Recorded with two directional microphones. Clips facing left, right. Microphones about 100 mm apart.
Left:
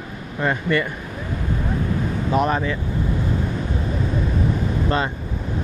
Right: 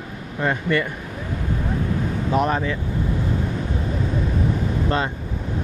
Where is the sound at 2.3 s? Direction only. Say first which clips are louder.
Left 1 dB; 30° left (ahead or behind).